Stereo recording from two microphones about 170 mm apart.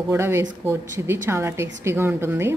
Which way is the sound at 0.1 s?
15° right (ahead or behind).